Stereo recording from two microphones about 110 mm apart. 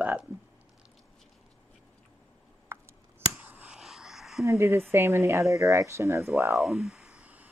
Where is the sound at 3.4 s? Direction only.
15° right (ahead or behind).